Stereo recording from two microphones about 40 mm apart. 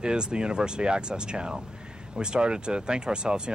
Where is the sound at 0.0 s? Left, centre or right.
Right.